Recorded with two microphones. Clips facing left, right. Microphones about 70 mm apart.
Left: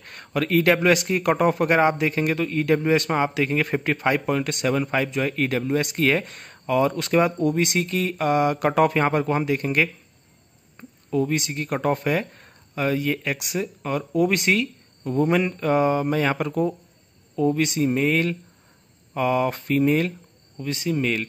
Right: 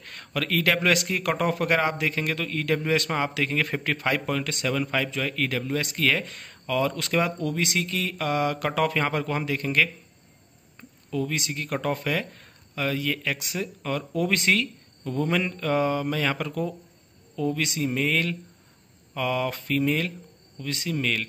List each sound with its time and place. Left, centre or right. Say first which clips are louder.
0.0 s speech: left 5 dB; left
11.1 s speech: left 5 dB; left